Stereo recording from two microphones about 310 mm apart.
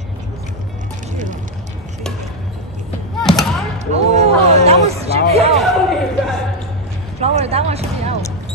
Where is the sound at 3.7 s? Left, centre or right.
Right.